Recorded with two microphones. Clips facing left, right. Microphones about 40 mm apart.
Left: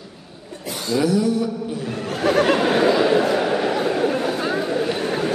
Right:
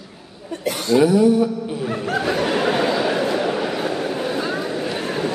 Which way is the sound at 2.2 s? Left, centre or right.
Left.